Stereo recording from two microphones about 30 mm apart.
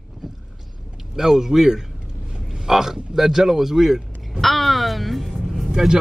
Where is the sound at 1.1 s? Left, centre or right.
Centre.